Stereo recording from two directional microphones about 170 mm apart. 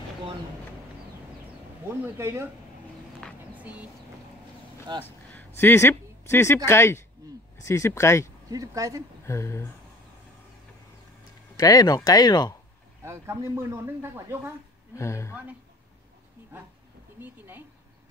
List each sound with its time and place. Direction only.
2.0 s speech: 15° right (ahead or behind)
3.5 s speech: 10° right (ahead or behind)
5.0 s a sound: 10° left (ahead or behind)
5.6 s speech: 15° left (ahead or behind)
8.5 s speech: 20° right (ahead or behind)
9.2 s speech: 15° left (ahead or behind)
11.5 s speech: 20° left (ahead or behind)
13.0 s speech: 15° right (ahead or behind)
15.0 s speech: 15° left (ahead or behind)
17.2 s speech: 10° right (ahead or behind)